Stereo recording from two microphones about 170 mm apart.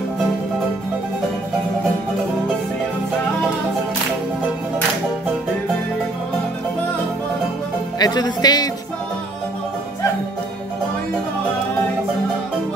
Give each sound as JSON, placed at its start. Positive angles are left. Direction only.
{"t": 8.0, "sound": "music", "side_deg": 25}